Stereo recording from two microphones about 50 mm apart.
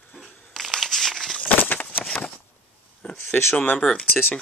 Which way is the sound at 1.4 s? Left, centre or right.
Left.